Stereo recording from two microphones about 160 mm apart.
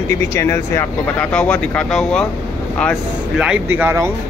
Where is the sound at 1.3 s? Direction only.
5° left (ahead or behind); by 4.1 s 15° right (ahead or behind).